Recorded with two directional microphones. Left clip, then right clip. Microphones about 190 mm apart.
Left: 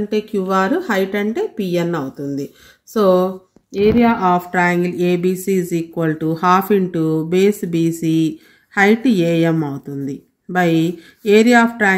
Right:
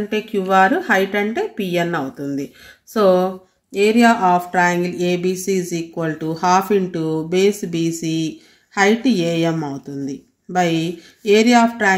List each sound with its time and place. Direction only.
0.1 s speech: 40° left (ahead or behind)